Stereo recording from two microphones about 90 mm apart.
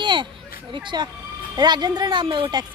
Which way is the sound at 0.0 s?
60° right (ahead or behind).